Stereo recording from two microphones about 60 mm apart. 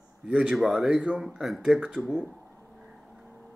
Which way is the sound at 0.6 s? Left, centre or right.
Centre.